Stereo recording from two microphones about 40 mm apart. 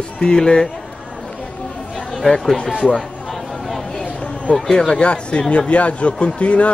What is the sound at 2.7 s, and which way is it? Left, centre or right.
Speech, right.